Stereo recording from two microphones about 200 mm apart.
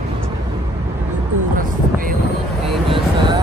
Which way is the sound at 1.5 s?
45° right (ahead or behind).